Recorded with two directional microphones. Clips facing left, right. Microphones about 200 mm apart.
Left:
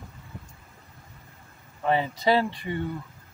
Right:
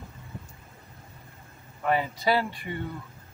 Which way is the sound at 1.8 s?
20° left (ahead or behind).